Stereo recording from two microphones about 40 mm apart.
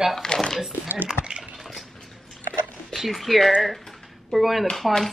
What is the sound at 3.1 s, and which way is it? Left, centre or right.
Speech, centre.